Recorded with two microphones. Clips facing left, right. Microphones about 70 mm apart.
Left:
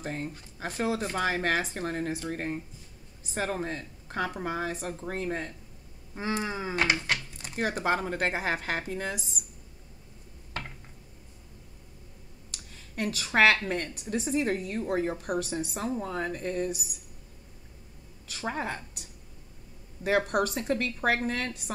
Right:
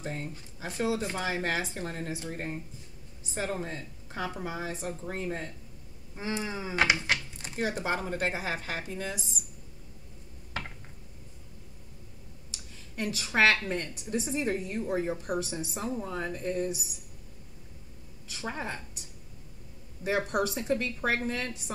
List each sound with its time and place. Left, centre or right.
0.0 s speech: left
3.6 s speech: left
6.1 s insect: left
6.8 s speech: centre
7.5 s speech: left
12.9 s speech: left
18.4 s speech: left
20.0 s speech: left